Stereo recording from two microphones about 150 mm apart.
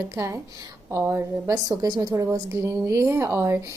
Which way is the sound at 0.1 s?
20° right (ahead or behind).